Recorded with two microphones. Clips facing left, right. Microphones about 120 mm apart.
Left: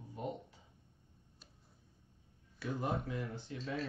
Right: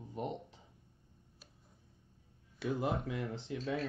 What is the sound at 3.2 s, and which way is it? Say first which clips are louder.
Speech: right 4 dB; 20° right (ahead or behind).